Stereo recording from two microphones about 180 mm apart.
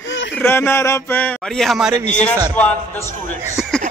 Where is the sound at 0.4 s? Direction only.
10° left (ahead or behind); by 2.0 s 5° right (ahead or behind).